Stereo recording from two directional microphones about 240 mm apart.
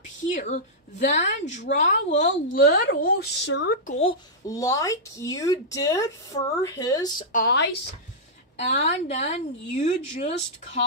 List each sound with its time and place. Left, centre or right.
0.3 s a woman's voice: left
4.5 s speech: centre
7.3 s speech: left
8.6 s a woman's voice: left